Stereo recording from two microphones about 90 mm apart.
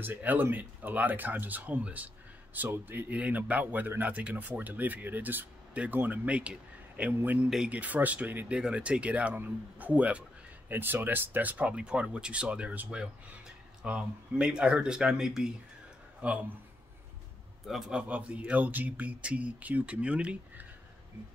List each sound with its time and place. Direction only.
0.0 s speech: 20° right (ahead or behind)
7.4 s speech: 10° right (ahead or behind)
17.6 s speech: 5° right (ahead or behind)